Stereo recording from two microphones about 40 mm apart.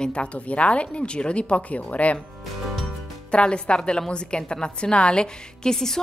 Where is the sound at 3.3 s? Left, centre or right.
Left.